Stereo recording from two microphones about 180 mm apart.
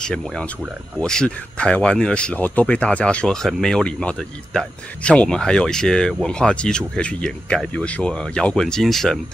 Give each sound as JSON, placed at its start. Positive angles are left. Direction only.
{"t": 0.0, "sound": "speech", "side_deg": 5}